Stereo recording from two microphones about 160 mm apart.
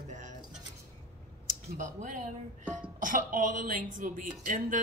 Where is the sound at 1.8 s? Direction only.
50° right (ahead or behind).